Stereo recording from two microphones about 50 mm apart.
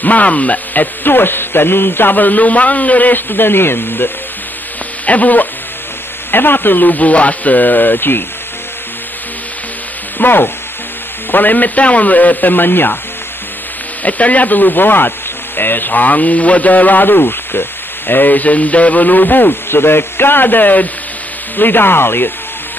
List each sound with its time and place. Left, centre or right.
0.0 s speech: left
1.0 s a man's voice: left
5.0 s speech: left
6.3 s speech: left
10.1 s speech: left
14.0 s a man's voice: left